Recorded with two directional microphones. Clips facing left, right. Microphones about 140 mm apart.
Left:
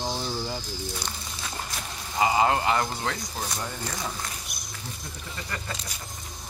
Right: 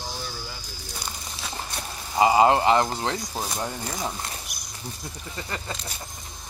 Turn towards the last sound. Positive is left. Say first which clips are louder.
# right 2 dB
turn(degrees=-25)  # may be behind; listen again after turning